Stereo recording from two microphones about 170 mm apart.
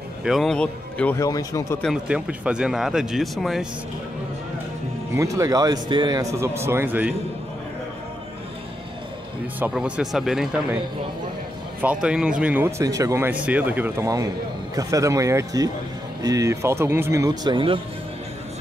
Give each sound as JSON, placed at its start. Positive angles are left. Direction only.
{"t": 0.2, "sound": "a man's voice", "side_deg": 0}
{"t": 1.8, "sound": "speech", "side_deg": -5}
{"t": 5.1, "sound": "speech", "side_deg": -20}
{"t": 9.6, "sound": "speech", "side_deg": -5}
{"t": 11.8, "sound": "speech", "side_deg": -5}